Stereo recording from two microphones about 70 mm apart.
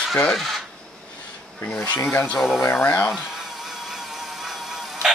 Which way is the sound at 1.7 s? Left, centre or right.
Left.